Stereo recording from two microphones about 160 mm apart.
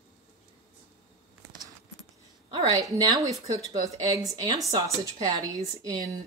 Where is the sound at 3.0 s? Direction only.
25° right (ahead or behind).